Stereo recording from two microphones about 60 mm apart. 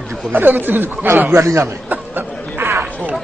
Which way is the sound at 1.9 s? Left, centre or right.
Right.